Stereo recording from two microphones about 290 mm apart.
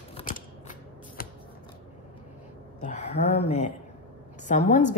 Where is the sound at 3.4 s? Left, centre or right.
Left.